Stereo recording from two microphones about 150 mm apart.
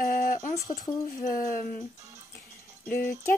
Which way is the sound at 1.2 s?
65° left (ahead or behind).